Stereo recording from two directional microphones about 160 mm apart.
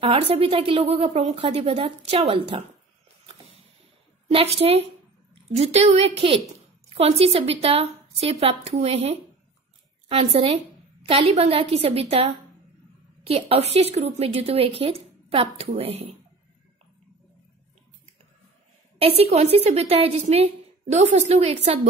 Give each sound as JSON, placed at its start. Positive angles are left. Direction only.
{"t": 0.0, "sound": "a woman's voice", "side_deg": -35}
{"t": 4.3, "sound": "a woman's voice", "side_deg": -35}
{"t": 18.9, "sound": "a woman's voice", "side_deg": -40}